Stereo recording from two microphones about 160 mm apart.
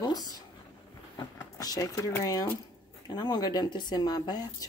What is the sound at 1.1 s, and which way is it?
Speech, 25° left (ahead or behind).